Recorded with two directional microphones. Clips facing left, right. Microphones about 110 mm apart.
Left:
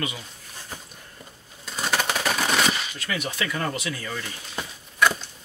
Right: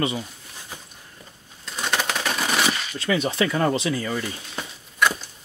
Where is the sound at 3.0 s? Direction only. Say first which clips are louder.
Right 7 dB; 25° right (ahead or behind).